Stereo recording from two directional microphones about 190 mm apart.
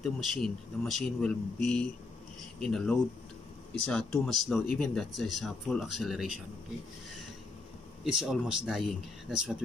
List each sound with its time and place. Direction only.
0.0 s speech: centre (ahead or behind)
8.0 s speech: centre (ahead or behind)